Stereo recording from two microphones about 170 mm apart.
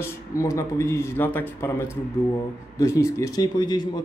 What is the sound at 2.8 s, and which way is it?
Speech, 20° left (ahead or behind).